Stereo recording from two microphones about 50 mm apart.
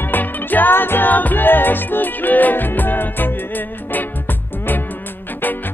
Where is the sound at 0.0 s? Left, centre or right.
Left.